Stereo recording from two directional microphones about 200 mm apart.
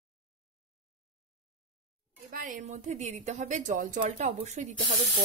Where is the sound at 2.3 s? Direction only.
40° right (ahead or behind).